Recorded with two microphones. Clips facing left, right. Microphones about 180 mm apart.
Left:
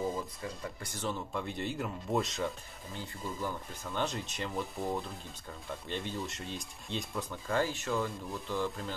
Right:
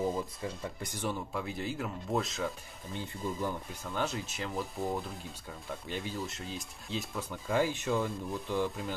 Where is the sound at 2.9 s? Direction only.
20° right (ahead or behind).